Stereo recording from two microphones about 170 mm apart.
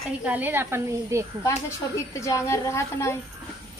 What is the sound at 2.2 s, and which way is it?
Speech, 20° left (ahead or behind).